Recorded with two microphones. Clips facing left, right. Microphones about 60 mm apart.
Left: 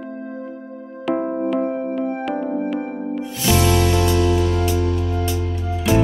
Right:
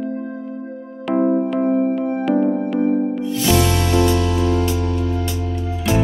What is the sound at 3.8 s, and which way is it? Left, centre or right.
Music, right.